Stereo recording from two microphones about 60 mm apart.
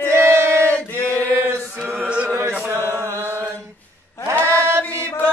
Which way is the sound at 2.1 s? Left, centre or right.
Centre.